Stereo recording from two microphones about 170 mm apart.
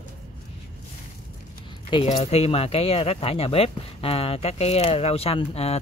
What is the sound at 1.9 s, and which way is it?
Speech, 40° left (ahead or behind).